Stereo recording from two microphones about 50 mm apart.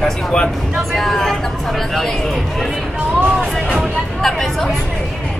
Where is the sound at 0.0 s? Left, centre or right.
Centre.